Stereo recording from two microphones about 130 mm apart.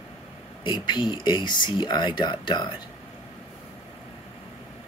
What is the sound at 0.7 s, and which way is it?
Speech, 35° left (ahead or behind).